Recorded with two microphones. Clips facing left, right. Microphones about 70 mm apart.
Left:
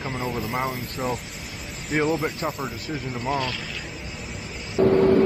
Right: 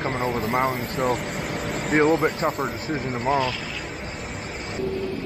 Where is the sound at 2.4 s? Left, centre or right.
Right.